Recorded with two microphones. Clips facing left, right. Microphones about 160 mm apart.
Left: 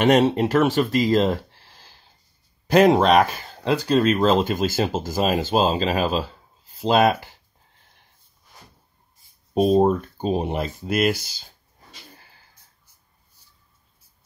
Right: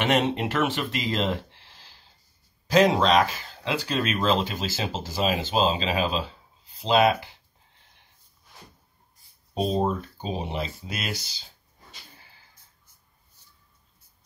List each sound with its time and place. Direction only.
0.0 s speech: 40° left (ahead or behind)
2.7 s speech: 55° left (ahead or behind)
9.5 s speech: 50° left (ahead or behind)
13.4 s a sound: 10° left (ahead or behind)